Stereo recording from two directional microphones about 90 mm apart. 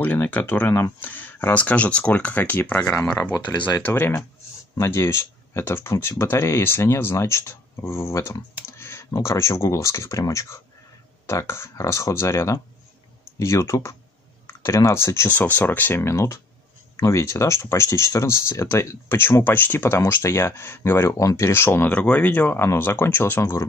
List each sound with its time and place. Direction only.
0.0 s speech: 20° left (ahead or behind); by 8.4 s 35° left (ahead or behind)
8.6 s computer keyboard: 30° left (ahead or behind)
9.2 s speech: 35° left (ahead or behind)
21.5 s speech: 25° left (ahead or behind)